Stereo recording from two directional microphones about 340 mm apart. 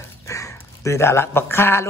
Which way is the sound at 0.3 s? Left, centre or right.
Centre.